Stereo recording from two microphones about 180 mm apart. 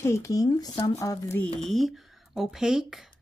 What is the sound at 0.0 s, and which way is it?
A woman's voice, 15° left (ahead or behind).